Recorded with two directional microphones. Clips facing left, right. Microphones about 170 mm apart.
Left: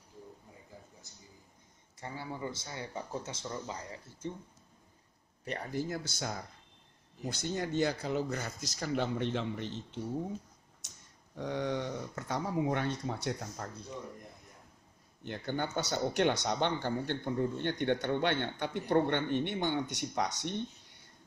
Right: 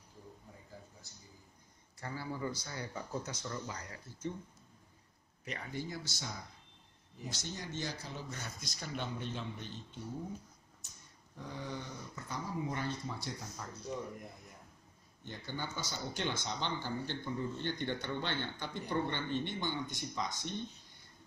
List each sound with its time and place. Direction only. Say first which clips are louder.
2.0 s speech: even; 20° left (ahead or behind)
5.4 s speech: left 6 dB; 35° left (ahead or behind)
5.9 s speech: left 6 dB; 50° left (ahead or behind)
7.5 s speech: left 12 dB; 60° left (ahead or behind)
8.3 s a man's voice: left 8 dB; 85° left
10.8 s a sound: left 4 dB; 90° left
11.3 s speech: left 9 dB; 80° left
15.2 s speech: left 7 dB; 60° left (ahead or behind)